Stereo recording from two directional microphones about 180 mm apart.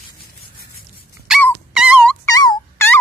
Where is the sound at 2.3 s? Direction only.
20° left (ahead or behind).